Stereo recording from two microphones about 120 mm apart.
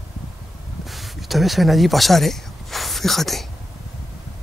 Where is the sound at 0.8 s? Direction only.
Centre (ahead or behind).